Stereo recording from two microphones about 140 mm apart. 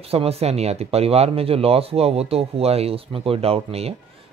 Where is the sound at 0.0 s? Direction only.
45° right (ahead or behind).